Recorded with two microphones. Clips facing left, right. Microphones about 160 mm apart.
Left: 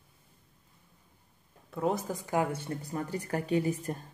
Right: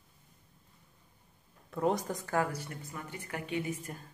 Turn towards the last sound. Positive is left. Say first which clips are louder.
# left 7 dB
turn(degrees=35)  # may be behind; listen again after turning